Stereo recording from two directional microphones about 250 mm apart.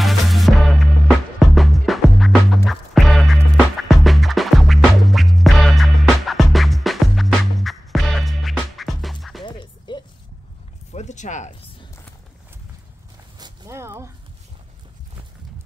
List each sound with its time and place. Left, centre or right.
0.0 s music: centre
9.4 s music: centre
10.9 s zipper: left
13.4 s a sound: centre